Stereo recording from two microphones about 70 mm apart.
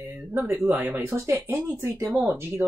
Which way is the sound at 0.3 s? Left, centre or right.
Right.